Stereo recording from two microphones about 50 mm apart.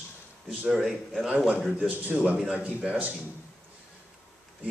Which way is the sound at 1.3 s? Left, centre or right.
Right.